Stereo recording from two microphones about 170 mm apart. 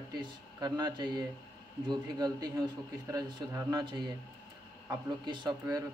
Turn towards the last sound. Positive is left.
turn(degrees=-25)  # may be behind; listen again after turning